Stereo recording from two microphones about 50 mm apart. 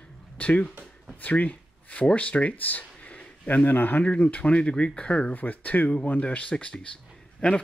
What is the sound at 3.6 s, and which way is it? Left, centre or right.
A man's voice, left.